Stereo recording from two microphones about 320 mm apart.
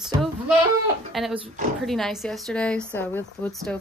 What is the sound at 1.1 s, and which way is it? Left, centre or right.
A woman's voice, centre.